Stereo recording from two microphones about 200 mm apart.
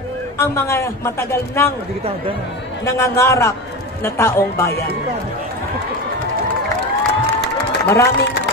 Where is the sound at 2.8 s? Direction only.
15° left (ahead or behind).